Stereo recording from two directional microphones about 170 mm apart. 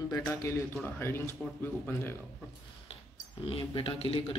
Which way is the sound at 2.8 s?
30° left (ahead or behind).